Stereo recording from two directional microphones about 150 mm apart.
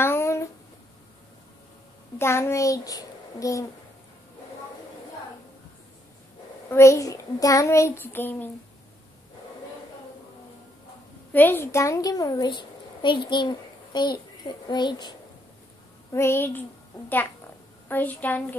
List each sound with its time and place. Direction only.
0.0 s a sound: 15° left (ahead or behind)
2.1 s a child's voice: 15° left (ahead or behind)
6.7 s a child's voice: 20° left (ahead or behind)
11.3 s a child's voice: 15° left (ahead or behind); by 15.1 s 30° left (ahead or behind)
16.1 s a woman's voice: 15° left (ahead or behind)
17.8 s a woman's voice: 10° left (ahead or behind)